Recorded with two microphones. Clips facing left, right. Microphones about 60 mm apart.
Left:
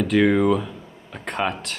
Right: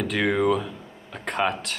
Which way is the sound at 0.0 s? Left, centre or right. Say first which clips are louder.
Left 5 dB; centre.